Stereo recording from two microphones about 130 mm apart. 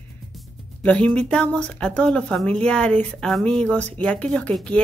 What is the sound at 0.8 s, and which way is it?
Speech, 10° left (ahead or behind).